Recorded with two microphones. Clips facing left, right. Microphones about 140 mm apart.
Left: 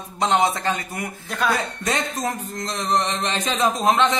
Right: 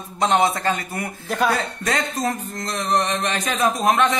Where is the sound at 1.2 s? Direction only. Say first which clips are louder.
Right 3 dB; 5° right (ahead or behind).